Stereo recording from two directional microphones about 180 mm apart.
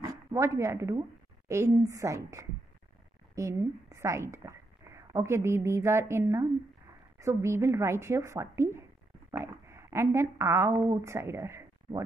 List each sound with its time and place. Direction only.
0.3 s a woman's voice: 15° right (ahead or behind)